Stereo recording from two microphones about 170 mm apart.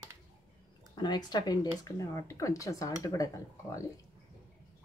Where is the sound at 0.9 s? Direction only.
25° left (ahead or behind).